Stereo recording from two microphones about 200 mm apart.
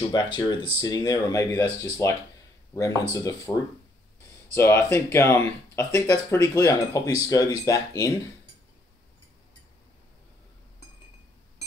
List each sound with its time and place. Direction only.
0.1 s speech: 20° left (ahead or behind)
4.6 s speech: 15° left (ahead or behind)